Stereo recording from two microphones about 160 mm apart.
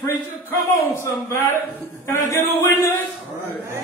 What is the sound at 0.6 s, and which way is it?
Chant, 15° left (ahead or behind).